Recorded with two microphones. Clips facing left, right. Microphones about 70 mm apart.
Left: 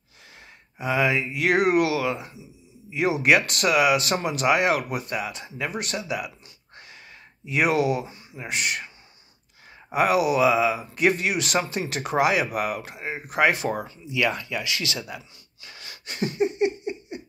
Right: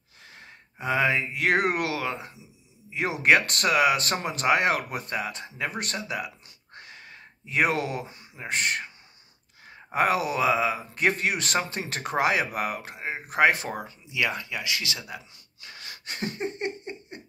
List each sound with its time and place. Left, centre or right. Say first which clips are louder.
0.7 s speech: left 1 dB; right
5.8 s a sound: left 2 dB; right
8.5 s speech: even; right
9.9 s speech: left 4 dB; right
13.7 s speech: left 3 dB; centre
15.6 s a sound: even; right